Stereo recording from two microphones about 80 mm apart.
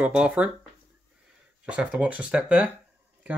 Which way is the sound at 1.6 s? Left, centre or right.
Centre.